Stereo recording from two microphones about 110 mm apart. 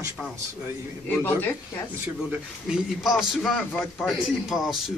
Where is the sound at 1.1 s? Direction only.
15° left (ahead or behind).